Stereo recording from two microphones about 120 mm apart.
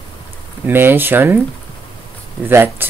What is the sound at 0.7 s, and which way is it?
Speech, 15° right (ahead or behind).